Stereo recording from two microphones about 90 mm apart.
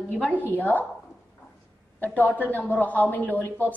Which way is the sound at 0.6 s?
20° left (ahead or behind).